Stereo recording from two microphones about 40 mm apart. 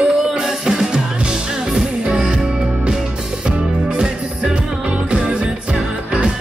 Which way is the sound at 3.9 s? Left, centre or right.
Right.